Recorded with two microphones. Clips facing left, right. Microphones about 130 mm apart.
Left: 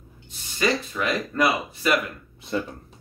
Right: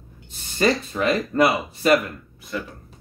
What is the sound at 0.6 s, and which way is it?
Speech, 40° right (ahead or behind).